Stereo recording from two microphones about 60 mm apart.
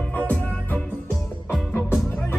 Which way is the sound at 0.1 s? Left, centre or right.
Left.